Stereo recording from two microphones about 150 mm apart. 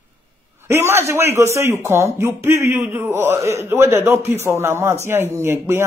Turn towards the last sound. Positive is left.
turn(degrees=-15)  # may be behind; listen again after turning